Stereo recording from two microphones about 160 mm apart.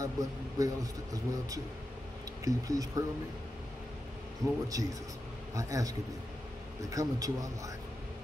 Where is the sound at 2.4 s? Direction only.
20° right (ahead or behind).